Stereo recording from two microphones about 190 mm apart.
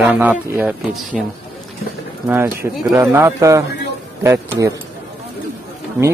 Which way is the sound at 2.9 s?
15° right (ahead or behind).